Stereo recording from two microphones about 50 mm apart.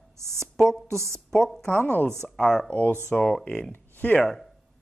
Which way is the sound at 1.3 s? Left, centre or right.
Centre.